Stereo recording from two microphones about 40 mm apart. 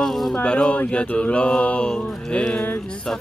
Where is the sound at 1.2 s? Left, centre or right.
Left.